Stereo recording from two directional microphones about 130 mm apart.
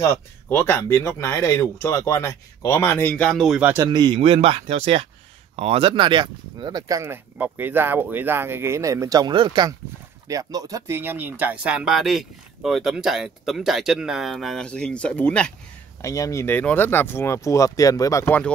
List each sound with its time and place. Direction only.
0.0 s speech: 20° left (ahead or behind); by 3.7 s 5° right (ahead or behind)
3.9 s speech: 35° right (ahead or behind)
4.2 s speech: 50° right (ahead or behind); by 11.0 s 25° right (ahead or behind)
11.0 s speech: 15° right (ahead or behind); by 15.5 s 10° left (ahead or behind)
16.0 s speech: 25° left (ahead or behind)
18.2 s speech: 10° left (ahead or behind)